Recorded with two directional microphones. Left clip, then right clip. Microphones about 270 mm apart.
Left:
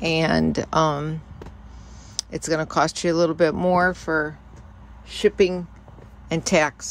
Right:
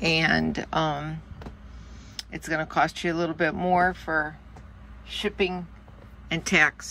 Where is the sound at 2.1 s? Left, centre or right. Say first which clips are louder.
Left 5 dB; left.